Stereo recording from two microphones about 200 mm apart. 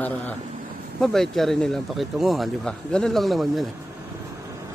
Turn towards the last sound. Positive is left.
turn(degrees=0)  # may be behind; listen again after turning